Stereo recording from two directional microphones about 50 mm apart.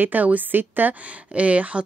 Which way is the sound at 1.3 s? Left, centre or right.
Right.